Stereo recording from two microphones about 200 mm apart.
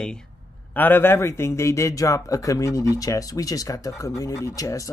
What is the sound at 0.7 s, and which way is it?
Speech, 10° left (ahead or behind).